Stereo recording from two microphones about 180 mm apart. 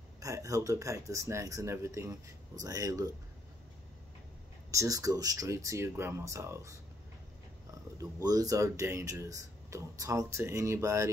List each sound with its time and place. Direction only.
0.2 s speech: 20° right (ahead or behind)
4.6 s speech: 20° right (ahead or behind)
8.0 s speech: 20° right (ahead or behind)